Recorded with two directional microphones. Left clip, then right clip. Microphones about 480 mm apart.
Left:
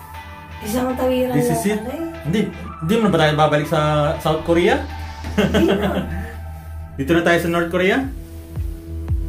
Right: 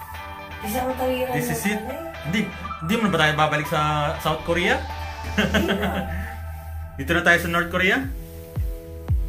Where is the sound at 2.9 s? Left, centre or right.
Centre.